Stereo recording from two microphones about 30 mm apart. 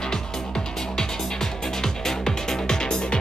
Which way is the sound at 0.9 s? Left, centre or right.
Centre.